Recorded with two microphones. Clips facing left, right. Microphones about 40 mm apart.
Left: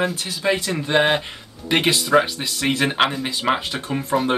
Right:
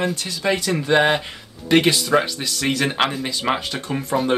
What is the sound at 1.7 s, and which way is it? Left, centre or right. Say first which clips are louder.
Speech: right 2 dB; centre.